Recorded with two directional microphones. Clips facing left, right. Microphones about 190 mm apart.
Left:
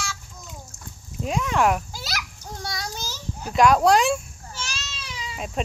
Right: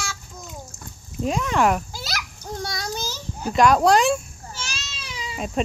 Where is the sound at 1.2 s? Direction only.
Centre (ahead or behind).